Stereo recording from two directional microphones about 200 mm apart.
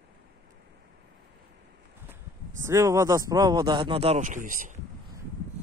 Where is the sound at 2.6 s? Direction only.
15° right (ahead or behind); by 4.8 s 40° right (ahead or behind).